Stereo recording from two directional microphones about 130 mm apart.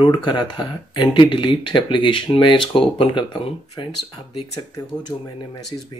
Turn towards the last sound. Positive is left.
turn(degrees=35)  # may be behind; listen again after turning